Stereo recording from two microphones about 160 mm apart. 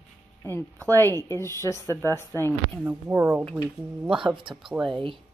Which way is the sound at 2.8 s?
15° right (ahead or behind).